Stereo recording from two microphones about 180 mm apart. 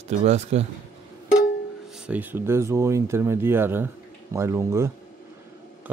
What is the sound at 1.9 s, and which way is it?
Speech, 5° right (ahead or behind).